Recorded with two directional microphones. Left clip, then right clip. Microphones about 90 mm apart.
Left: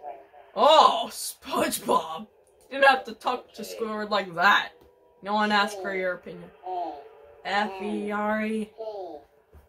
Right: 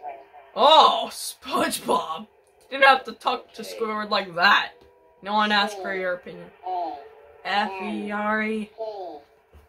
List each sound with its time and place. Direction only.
0.5 s speech: 5° right (ahead or behind)
7.4 s speech: 10° right (ahead or behind)